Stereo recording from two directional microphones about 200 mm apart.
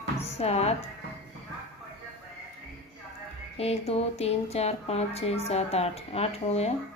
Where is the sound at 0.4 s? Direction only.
30° left (ahead or behind).